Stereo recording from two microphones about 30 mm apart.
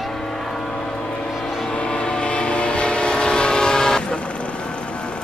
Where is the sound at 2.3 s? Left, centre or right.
Left.